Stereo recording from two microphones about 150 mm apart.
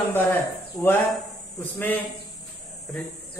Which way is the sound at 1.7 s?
10° left (ahead or behind).